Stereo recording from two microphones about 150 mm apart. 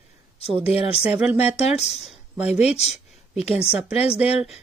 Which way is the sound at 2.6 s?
45° left (ahead or behind).